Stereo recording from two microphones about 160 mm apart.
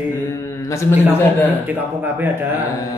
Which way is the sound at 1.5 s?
10° right (ahead or behind).